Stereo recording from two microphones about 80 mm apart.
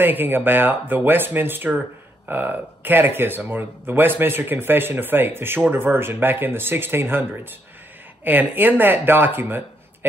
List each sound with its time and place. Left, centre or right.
0.0 s speech: right